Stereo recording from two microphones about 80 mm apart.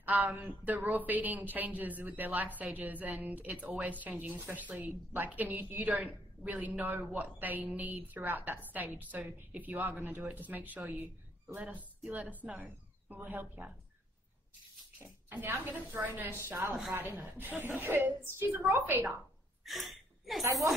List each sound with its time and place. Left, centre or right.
0.0 s a woman's voice: right
15.0 s a woman's voice: right
19.6 s a sound: centre
20.4 s speech: right